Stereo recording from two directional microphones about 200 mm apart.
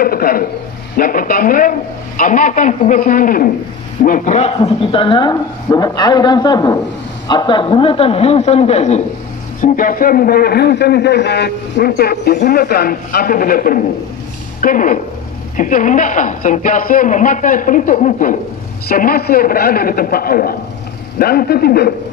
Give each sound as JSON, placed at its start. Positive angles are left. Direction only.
{"t": 0.0, "sound": "a man's voice", "side_deg": 45}
{"t": 9.6, "sound": "a man's voice", "side_deg": 45}